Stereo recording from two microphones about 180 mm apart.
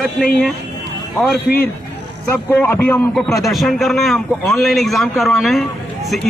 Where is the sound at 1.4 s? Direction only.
60° left (ahead or behind).